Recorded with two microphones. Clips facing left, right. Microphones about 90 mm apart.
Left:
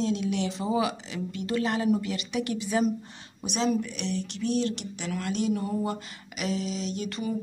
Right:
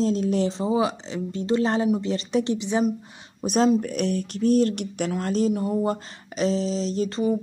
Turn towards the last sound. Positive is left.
turn(degrees=-35)  # may be behind; listen again after turning